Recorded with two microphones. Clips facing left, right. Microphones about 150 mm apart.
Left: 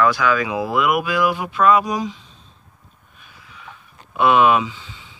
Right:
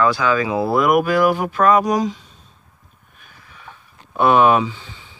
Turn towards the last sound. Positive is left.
turn(degrees=-40)  # may be behind; listen again after turning